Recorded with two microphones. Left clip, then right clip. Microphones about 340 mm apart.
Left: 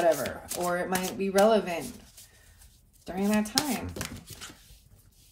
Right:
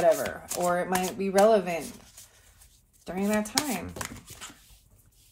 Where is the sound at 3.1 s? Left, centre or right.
Centre.